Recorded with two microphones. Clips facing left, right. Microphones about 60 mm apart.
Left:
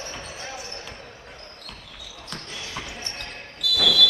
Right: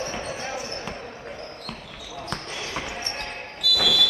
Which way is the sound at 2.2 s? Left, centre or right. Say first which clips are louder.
Right 4 dB; right.